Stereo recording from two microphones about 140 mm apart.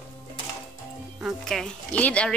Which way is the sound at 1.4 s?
5° left (ahead or behind).